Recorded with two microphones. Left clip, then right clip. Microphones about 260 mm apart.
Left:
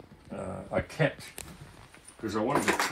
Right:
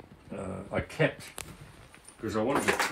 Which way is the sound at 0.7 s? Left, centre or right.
Centre.